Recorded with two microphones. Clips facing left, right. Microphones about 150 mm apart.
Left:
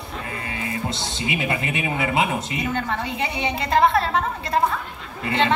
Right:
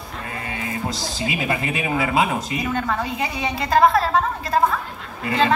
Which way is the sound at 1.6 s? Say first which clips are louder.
Right 2 dB; 30° right (ahead or behind).